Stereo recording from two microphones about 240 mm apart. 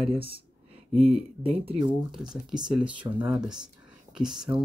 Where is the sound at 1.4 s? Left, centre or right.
Right.